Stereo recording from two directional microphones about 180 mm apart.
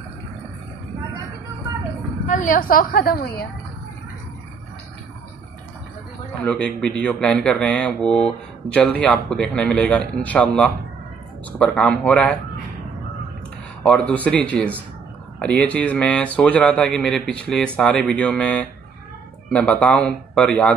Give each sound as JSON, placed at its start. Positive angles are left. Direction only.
{"t": 2.2, "sound": "a woman's voice", "side_deg": 45}
{"t": 6.4, "sound": "speech", "side_deg": 5}
{"t": 13.8, "sound": "a man's voice", "side_deg": 5}